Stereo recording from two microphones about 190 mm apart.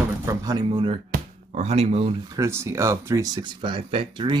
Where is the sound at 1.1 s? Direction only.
35° right (ahead or behind).